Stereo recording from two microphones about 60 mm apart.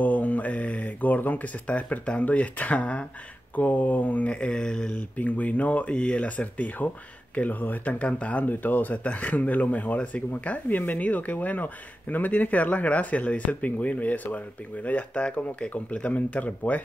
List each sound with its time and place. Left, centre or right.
0.0 s speech: left